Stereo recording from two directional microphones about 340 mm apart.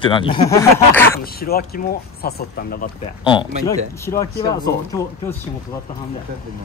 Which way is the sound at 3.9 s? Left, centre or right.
Centre.